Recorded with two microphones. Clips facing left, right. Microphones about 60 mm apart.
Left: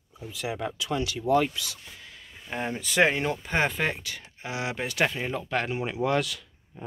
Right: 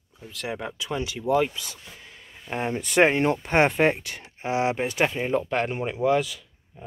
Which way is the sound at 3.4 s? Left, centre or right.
Right.